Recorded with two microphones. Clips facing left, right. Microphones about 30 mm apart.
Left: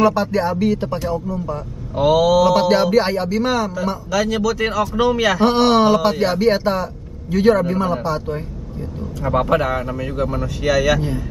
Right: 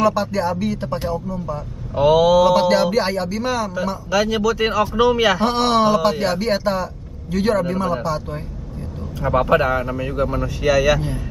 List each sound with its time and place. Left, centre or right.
0.0 s speech: centre
2.0 s speech: centre
2.4 s speech: centre
4.1 s speech: centre
5.4 s speech: centre
9.2 s speech: centre